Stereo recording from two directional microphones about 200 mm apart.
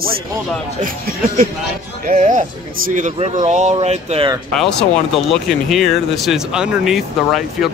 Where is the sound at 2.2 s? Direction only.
40° right (ahead or behind).